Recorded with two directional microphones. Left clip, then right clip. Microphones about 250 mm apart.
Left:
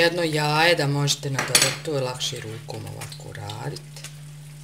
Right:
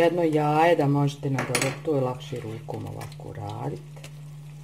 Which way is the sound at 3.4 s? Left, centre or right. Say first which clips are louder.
Even; centre.